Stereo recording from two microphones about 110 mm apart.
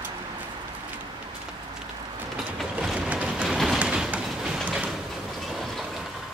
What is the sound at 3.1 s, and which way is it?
Train, 10° right (ahead or behind).